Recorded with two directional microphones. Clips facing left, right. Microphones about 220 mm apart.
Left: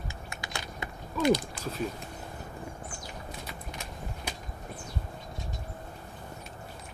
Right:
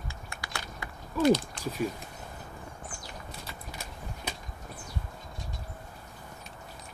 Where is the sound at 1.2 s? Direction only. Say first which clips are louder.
Right 2 dB; 10° left (ahead or behind).